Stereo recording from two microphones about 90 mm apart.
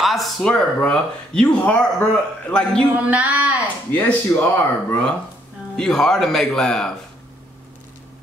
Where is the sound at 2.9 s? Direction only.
15° right (ahead or behind).